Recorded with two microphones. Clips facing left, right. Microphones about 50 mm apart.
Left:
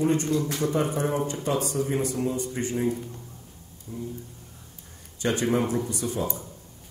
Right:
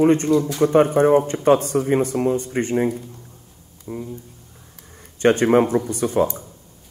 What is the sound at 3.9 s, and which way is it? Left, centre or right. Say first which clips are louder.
Speech: right 7 dB; right.